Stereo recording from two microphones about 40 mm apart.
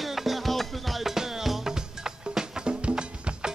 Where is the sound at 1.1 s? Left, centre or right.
Centre.